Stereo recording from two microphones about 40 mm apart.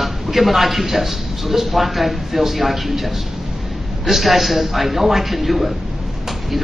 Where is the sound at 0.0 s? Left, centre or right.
Centre.